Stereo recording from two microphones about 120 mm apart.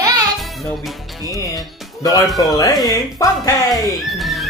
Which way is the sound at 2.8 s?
30° left (ahead or behind).